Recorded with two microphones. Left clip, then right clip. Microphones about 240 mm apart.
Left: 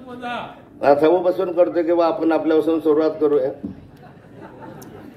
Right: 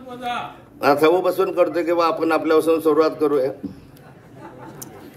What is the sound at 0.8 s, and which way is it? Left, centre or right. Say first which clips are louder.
A man's voice: left 1 dB; right.